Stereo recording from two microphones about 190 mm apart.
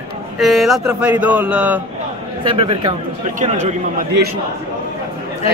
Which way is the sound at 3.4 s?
40° right (ahead or behind).